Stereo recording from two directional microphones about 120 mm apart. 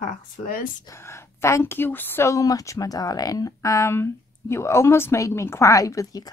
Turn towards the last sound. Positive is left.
turn(degrees=30)  # may be behind; listen again after turning